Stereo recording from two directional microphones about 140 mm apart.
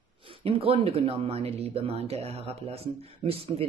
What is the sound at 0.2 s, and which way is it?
Speech, 40° right (ahead or behind).